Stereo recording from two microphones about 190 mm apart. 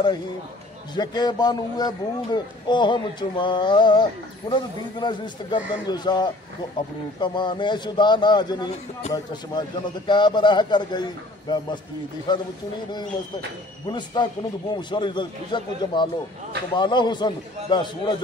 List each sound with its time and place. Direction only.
0.9 s speech: 20° left (ahead or behind)
13.8 s speech: 20° left (ahead or behind)